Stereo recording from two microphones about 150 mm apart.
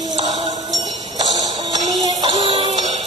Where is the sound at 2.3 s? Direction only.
40° right (ahead or behind).